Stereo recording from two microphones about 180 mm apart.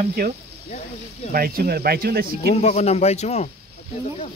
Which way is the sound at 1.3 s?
55° right (ahead or behind).